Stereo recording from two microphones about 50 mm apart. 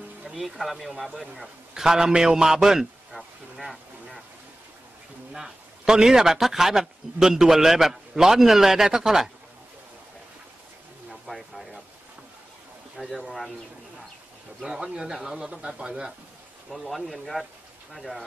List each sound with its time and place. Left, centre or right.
0.2 s a man's voice: centre
5.3 s a man's voice: centre
11.1 s a sound: centre
12.9 s a man's voice: centre
14.7 s a man's voice: centre
16.7 s a man's voice: centre